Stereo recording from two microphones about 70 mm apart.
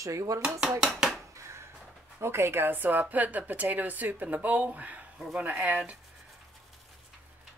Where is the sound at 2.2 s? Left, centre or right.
Right.